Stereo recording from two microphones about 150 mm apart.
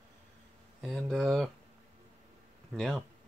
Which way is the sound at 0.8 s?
5° left (ahead or behind).